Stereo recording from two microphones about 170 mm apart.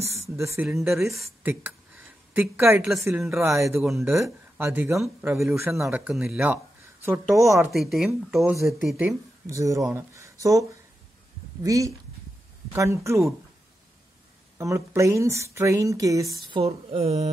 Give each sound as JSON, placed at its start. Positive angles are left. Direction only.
{"t": 0.4, "sound": "speech", "side_deg": -15}
{"t": 0.7, "sound": "speech", "side_deg": 0}
{"t": 1.4, "sound": "a sound", "side_deg": -10}
{"t": 2.8, "sound": "speech", "side_deg": 0}
{"t": 3.3, "sound": "speech", "side_deg": -15}
{"t": 3.8, "sound": "speech", "side_deg": 0}
{"t": 4.1, "sound": "speech", "side_deg": -15}
{"t": 6.4, "sound": "a sound", "side_deg": -15}
{"t": 7.3, "sound": "speech", "side_deg": -15}
{"t": 7.7, "sound": "speech", "side_deg": 0}
{"t": 8.9, "sound": "speech", "side_deg": -15}
{"t": 14.6, "sound": "speech", "side_deg": -15}
{"t": 16.4, "sound": "speech", "side_deg": -35}